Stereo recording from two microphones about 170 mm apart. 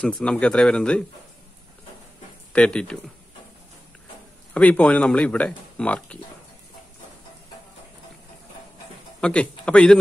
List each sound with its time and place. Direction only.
0.0 s speech: 5° left (ahead or behind)
2.5 s speech: 5° left (ahead or behind)
4.6 s speech: 10° left (ahead or behind)
9.2 s speech: 5° left (ahead or behind)